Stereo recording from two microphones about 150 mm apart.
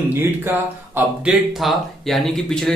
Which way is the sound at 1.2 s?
Centre (ahead or behind).